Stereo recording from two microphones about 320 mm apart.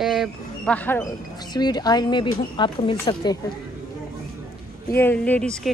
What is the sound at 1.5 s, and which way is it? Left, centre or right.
Speech, centre.